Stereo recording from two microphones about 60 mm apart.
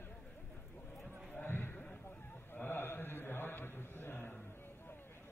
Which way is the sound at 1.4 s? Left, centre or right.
Left.